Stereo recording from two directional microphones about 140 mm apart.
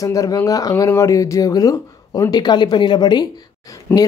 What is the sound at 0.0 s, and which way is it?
Speech, 25° left (ahead or behind).